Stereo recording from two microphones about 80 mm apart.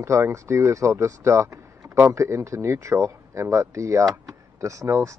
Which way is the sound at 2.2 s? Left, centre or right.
Right.